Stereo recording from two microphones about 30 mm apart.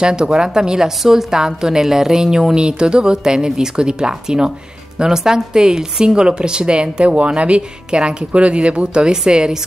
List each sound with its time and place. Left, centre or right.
0.0 s a woman's voice: right
9.1 s a woman's voice: right